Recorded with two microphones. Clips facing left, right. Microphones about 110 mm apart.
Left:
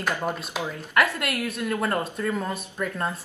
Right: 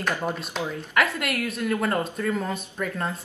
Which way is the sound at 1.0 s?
Centre (ahead or behind).